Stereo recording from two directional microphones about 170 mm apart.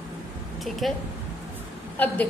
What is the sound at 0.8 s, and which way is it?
Speech, centre (ahead or behind).